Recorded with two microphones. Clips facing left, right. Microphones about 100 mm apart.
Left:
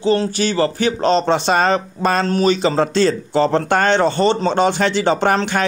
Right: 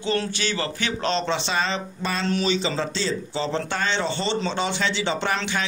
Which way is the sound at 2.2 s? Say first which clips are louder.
Left 7 dB; 45° left (ahead or behind).